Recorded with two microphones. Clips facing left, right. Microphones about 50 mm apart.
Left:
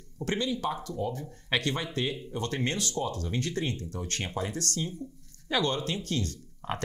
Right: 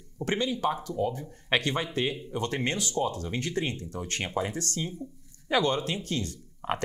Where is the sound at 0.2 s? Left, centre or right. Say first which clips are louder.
Right 2 dB; right.